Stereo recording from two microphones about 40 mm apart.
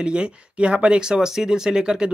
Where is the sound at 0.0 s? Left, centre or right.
Right.